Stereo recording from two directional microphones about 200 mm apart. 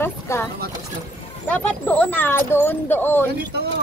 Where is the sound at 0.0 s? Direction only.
10° left (ahead or behind).